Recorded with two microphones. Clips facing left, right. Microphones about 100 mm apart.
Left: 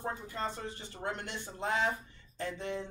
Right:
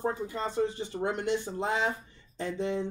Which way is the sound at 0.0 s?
15° right (ahead or behind).